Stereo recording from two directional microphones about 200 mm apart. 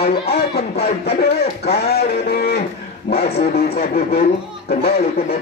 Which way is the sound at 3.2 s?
30° left (ahead or behind).